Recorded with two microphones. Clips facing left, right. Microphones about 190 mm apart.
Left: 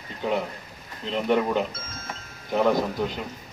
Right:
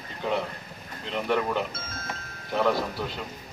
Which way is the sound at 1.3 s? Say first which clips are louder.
Left 4 dB; 15° left (ahead or behind).